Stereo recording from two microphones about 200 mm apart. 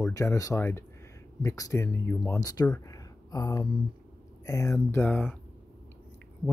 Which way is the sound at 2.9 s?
20° left (ahead or behind).